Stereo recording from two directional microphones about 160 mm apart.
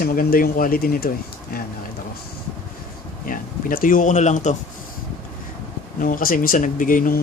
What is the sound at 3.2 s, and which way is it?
Speech, 60° left (ahead or behind).